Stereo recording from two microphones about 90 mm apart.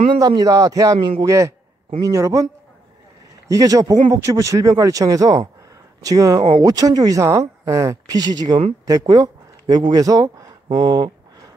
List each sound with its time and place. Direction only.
0.4 s speech: 45° right (ahead or behind)
3.4 s speech: 40° right (ahead or behind)
10.7 s speech: 50° right (ahead or behind)